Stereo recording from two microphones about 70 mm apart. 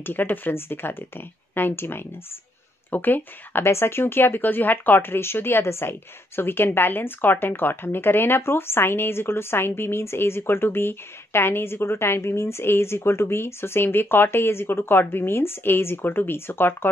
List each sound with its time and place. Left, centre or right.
0.0 s a woman's voice: left